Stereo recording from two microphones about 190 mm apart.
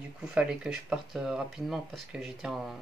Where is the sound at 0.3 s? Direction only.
5° right (ahead or behind).